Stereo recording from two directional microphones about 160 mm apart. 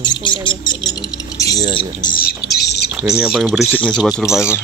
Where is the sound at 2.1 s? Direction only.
80° left.